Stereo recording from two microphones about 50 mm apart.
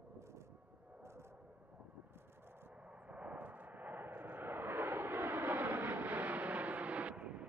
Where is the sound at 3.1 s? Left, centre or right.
Right.